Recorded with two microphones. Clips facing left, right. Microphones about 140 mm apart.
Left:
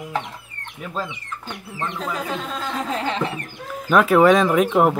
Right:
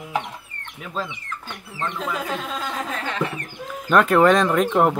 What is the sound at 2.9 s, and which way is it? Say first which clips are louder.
Music: left 4 dB; 25° left (ahead or behind).